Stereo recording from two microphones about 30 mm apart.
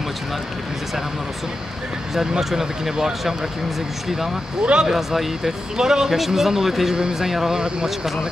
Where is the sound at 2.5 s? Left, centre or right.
Centre.